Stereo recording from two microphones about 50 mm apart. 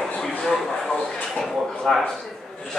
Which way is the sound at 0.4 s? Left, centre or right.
Centre.